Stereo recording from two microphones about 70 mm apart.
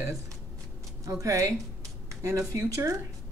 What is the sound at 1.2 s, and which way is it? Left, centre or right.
Speech, right.